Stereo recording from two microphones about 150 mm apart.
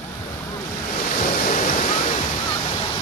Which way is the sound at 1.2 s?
55° left (ahead or behind).